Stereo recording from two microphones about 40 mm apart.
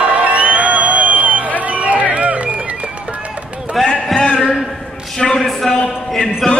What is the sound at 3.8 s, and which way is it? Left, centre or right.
Speech, centre.